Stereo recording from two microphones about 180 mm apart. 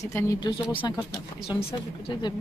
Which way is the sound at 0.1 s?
15° left (ahead or behind).